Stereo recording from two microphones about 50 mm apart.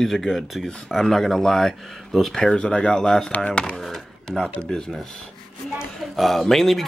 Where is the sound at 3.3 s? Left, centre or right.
Left.